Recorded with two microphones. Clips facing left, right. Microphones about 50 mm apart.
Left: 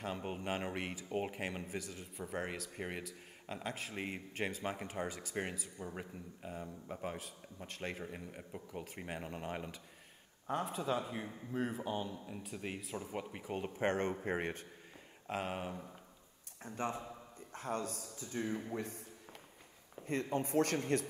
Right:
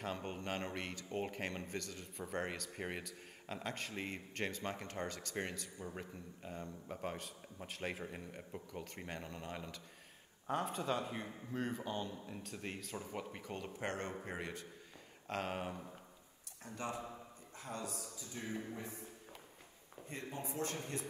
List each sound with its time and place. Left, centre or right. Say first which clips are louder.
0.0 s speech: left 2 dB; centre
9.3 s speech: left 4 dB; left
10.4 s a man's voice: left 1 dB; centre; by 14.7 s left
15.2 s speech: left 1 dB; centre
16.6 s a man's voice: left 4 dB; left
17.5 s a man's voice: left 6 dB; left
18.8 s a man's voice: left 4 dB; left
20.1 s speech: left 9 dB; left